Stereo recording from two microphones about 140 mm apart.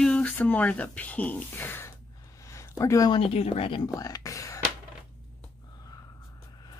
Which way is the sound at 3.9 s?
25° left (ahead or behind).